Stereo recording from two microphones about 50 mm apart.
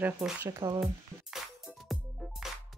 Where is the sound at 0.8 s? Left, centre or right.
Centre.